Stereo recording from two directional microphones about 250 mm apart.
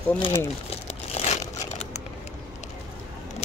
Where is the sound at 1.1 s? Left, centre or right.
Left.